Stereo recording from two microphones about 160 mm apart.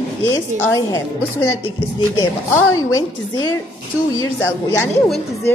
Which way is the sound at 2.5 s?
20° left (ahead or behind).